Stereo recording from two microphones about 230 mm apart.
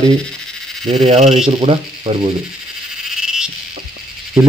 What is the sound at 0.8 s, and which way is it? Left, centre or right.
Speech, right.